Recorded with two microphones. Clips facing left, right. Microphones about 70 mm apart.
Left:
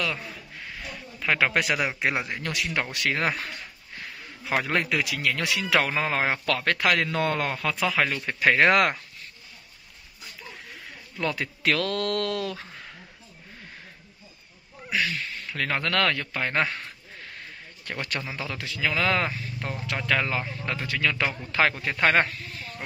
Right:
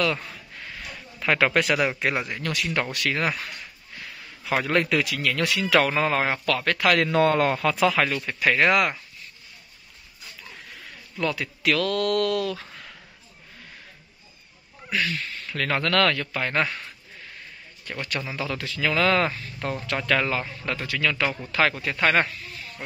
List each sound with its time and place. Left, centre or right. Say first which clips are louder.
0.0 s a man's voice: right 5 dB; centre
1.5 s a man's voice: right 3 dB; centre; by 3.4 s left
4.6 s a man's voice: right 3 dB; centre
6.4 s speech: right 2 dB; left
7.1 s speech: right 6 dB; centre
8.3 s speech: left 3 dB; left
8.7 s speech: left 1 dB; left
11.1 s speech: right 2 dB; left
15.0 s speech: right 1 dB; centre
17.9 s speech: even; left
18.2 s a man's voice: right 3 dB; centre